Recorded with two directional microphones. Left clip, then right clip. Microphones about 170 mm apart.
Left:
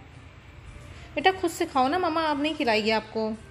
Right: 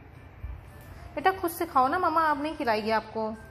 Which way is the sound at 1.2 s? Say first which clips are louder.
Left 3 dB; 40° left (ahead or behind).